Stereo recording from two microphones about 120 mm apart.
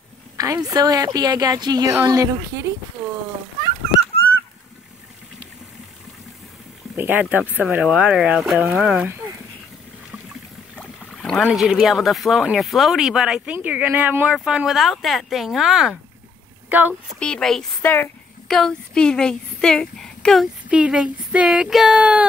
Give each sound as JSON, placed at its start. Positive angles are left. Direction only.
{"t": 0.4, "sound": "a woman's voice", "side_deg": -30}
{"t": 7.0, "sound": "speech", "side_deg": -15}
{"t": 10.8, "sound": "boat", "side_deg": 5}
{"t": 11.4, "sound": "speech", "side_deg": -5}
{"t": 16.6, "sound": "a sound", "side_deg": -15}
{"t": 17.2, "sound": "speech", "side_deg": 5}
{"t": 17.8, "sound": "speech", "side_deg": 15}
{"t": 18.5, "sound": "speech", "side_deg": 5}
{"t": 20.7, "sound": "speech", "side_deg": -10}